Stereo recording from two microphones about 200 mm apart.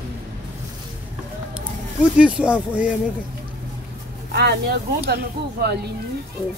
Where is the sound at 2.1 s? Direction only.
5° right (ahead or behind).